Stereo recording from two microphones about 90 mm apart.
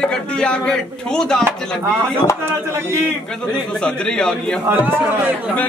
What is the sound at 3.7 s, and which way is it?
Speech, 10° left (ahead or behind).